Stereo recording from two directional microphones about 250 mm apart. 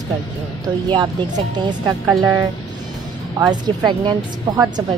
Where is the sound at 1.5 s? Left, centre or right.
Centre.